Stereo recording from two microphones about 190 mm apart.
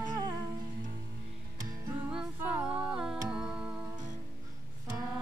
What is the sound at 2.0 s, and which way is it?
Music, 5° right (ahead or behind).